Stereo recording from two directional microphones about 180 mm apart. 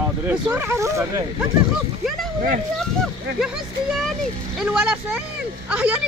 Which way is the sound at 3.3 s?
5° right (ahead or behind).